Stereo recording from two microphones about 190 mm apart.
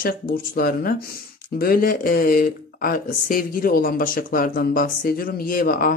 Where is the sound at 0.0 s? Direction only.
50° left (ahead or behind).